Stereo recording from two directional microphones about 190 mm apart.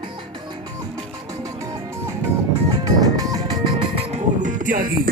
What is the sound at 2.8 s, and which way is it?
Music, 20° right (ahead or behind).